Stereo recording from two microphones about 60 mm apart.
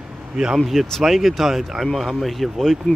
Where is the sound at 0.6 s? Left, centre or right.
Centre.